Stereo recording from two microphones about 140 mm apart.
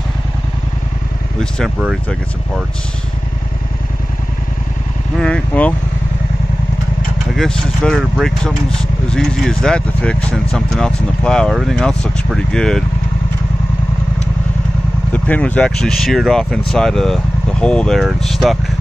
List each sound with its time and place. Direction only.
5.1 s speech: 5° left (ahead or behind)
7.3 s speech: 5° left (ahead or behind)
15.1 s speech: 10° left (ahead or behind)